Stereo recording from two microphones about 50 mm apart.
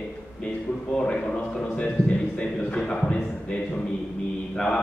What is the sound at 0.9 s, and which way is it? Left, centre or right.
Speech, left.